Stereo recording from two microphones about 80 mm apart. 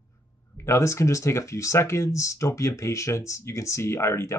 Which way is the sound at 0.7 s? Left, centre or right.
Left.